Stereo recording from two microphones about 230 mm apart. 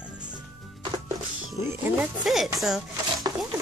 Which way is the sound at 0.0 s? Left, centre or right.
Centre.